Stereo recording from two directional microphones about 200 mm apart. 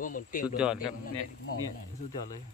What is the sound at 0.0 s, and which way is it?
Speech, 45° left (ahead or behind).